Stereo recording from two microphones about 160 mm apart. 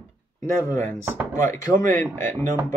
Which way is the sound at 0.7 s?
20° left (ahead or behind).